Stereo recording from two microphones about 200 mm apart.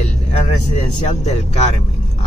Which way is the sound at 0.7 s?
35° left (ahead or behind).